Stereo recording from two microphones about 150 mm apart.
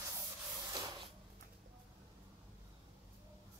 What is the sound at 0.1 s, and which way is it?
Spray, 25° right (ahead or behind).